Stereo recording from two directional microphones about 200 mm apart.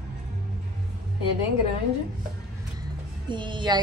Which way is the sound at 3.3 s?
25° right (ahead or behind).